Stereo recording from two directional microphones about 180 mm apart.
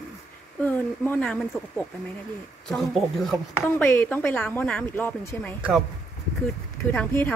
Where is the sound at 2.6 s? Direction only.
Centre (ahead or behind).